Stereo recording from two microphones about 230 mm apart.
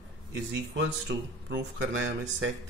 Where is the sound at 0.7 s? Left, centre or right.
Right.